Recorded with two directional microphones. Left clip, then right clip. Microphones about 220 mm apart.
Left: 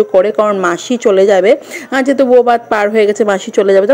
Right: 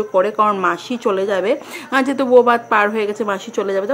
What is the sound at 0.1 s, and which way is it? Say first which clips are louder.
A woman's voice: left 5 dB; 25° left (ahead or behind).